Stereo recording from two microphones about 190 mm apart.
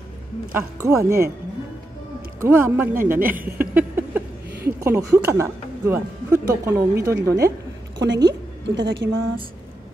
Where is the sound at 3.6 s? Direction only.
10° right (ahead or behind).